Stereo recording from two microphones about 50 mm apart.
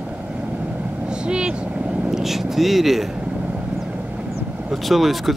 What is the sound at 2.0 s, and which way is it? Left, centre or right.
Speech, centre.